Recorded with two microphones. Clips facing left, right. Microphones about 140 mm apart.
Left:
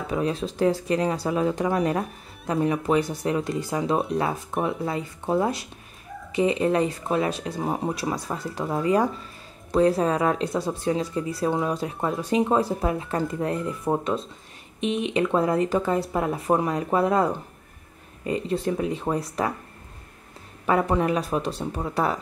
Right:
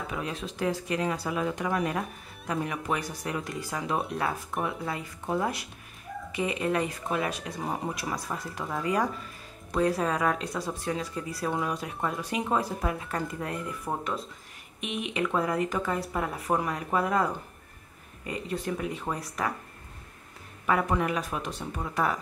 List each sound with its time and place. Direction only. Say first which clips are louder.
0.0 s speech: left 8 dB; 30° left (ahead or behind)
20.6 s speech: left 5 dB; 30° left (ahead or behind)